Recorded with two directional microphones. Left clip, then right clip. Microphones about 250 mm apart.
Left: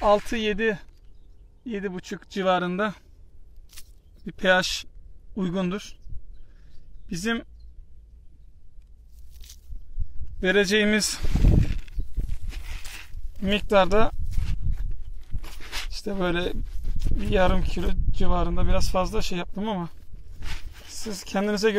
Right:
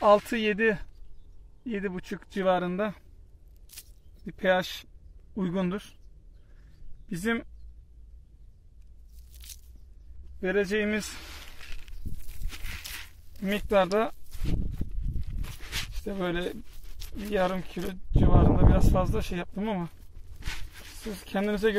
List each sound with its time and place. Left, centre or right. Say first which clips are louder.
0.0 s speech: even; centre
4.3 s speech: left 5 dB; centre
7.1 s speech: left 2 dB; centre
10.4 s a man's voice: left 6 dB; left
12.4 s zipper: right 3 dB; centre
15.1 s a sound: left 3 dB; left
15.9 s speech: left 7 dB; centre
16.8 s a sound: left 9 dB; left
17.2 s speech: left 5 dB; centre
21.0 s speech: left 3 dB; centre